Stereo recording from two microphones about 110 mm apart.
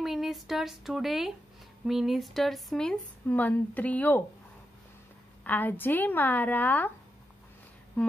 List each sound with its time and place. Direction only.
0.0 s speech: centre (ahead or behind); by 4.2 s 15° left (ahead or behind)
5.4 s speech: 15° left (ahead or behind)